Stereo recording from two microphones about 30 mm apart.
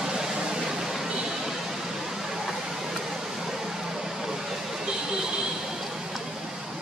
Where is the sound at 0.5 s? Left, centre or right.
Centre.